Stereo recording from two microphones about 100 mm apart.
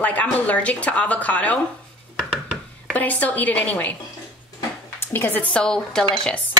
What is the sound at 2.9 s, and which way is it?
Speech, 15° left (ahead or behind).